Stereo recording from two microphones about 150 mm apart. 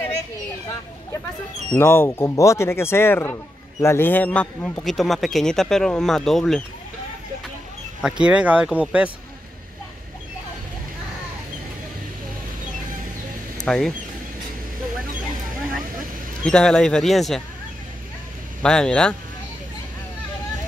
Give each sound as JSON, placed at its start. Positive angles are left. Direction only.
{"t": 1.7, "sound": "a man's voice", "side_deg": 15}
{"t": 8.0, "sound": "speech", "side_deg": -5}
{"t": 13.6, "sound": "speech", "side_deg": 5}
{"t": 16.4, "sound": "a man's voice", "side_deg": 5}
{"t": 18.6, "sound": "a man's voice", "side_deg": 5}